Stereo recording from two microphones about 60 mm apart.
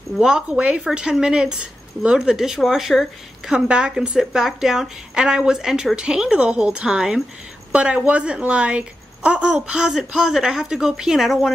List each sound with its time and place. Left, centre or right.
0.1 s speech: centre
0.5 s speech: right; by 11.5 s centre